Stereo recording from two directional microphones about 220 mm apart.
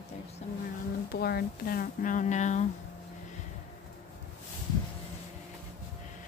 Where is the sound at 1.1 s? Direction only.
45° left (ahead or behind).